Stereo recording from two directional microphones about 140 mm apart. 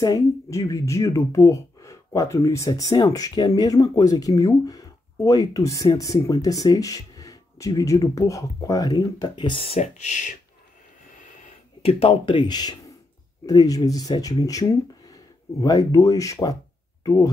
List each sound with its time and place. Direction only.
0.0 s speech: 25° left (ahead or behind)
9.8 s speech: 55° left (ahead or behind)
11.8 s speech: 45° left (ahead or behind); by 17.3 s 25° left (ahead or behind)